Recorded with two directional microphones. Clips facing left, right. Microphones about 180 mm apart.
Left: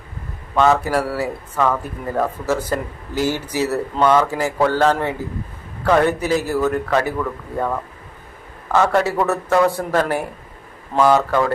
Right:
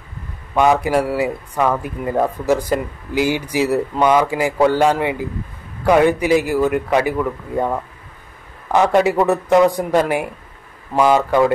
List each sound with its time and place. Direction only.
0.6 s speech: 15° right (ahead or behind)